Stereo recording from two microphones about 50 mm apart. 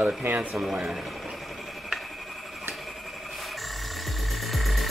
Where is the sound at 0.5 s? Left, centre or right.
Centre.